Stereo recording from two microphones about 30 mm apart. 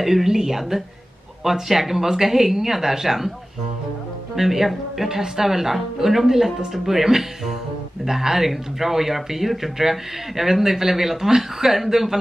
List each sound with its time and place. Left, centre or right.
0.0 s speech: centre
4.4 s speech: centre